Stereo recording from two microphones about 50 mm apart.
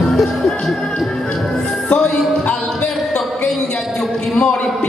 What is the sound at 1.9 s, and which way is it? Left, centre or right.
Music, left.